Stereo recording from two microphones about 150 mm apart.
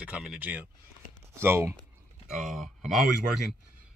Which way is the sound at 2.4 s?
Centre (ahead or behind).